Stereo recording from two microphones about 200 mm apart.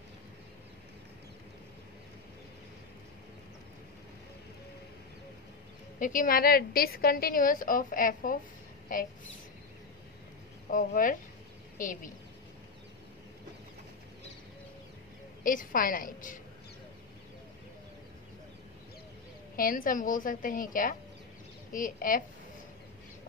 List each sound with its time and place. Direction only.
5.9 s a woman's voice: 40° left (ahead or behind)
10.7 s speech: 40° left (ahead or behind)
15.4 s a woman's voice: 45° left (ahead or behind)
19.5 s a woman's voice: 45° left (ahead or behind)